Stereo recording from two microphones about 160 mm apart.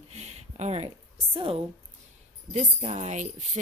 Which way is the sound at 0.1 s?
45° right (ahead or behind).